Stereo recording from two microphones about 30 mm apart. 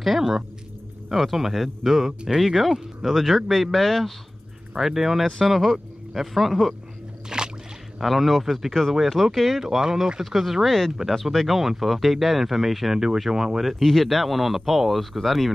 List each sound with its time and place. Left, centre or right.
1.1 s speech: centre
4.7 s speech: centre
7.2 s rowboat: right
8.0 s speech: centre
9.6 s speech: centre
10.2 s speech: centre
10.6 s speech: centre
11.3 s speech: centre
13.3 s speech: centre
13.6 s speech: centre